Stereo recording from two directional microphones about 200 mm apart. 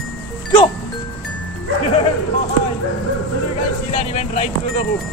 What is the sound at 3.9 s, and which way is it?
Vehicle, 35° left (ahead or behind).